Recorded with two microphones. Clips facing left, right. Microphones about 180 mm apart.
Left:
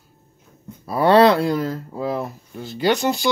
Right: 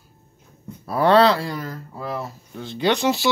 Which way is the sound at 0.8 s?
Centre (ahead or behind).